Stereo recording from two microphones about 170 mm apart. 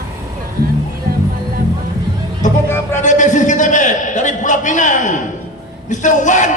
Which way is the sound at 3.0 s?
45° left (ahead or behind).